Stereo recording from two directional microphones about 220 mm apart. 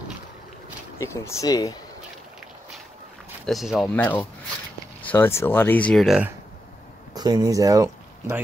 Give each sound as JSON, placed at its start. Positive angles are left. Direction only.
{"t": 0.9, "sound": "speech", "side_deg": 15}
{"t": 3.4, "sound": "speech", "side_deg": 0}
{"t": 7.2, "sound": "speech", "side_deg": -20}